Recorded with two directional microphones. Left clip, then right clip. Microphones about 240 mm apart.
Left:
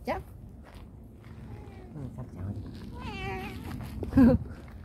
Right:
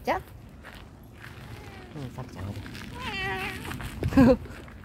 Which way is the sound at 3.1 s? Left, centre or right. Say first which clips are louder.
Right 6 dB; centre.